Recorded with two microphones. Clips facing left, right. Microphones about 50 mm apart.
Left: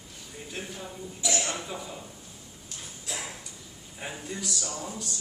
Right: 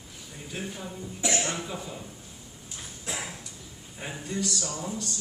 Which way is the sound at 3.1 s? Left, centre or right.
Right.